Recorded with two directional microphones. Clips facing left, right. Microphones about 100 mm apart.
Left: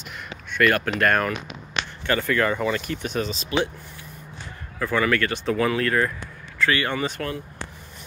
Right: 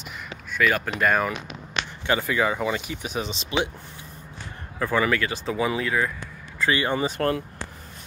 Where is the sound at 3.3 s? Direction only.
20° right (ahead or behind).